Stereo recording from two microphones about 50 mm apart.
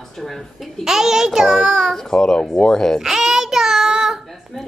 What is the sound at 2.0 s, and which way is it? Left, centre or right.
Speech, centre.